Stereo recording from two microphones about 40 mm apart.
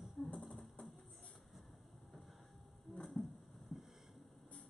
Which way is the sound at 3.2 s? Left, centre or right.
Left.